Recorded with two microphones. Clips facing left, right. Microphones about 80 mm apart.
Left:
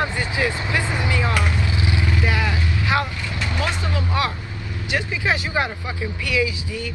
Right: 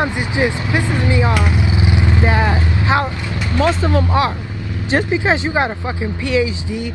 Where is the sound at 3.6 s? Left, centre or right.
Right.